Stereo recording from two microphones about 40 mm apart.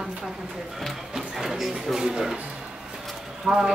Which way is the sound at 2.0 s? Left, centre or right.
Centre.